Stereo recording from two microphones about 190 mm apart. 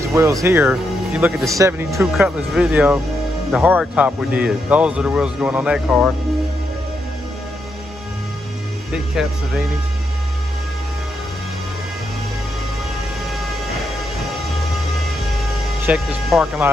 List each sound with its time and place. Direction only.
0.0 s speech: 15° right (ahead or behind)
2.1 s speech: 5° right (ahead or behind)
8.9 s speech: centre (ahead or behind)
15.8 s speech: 5° right (ahead or behind)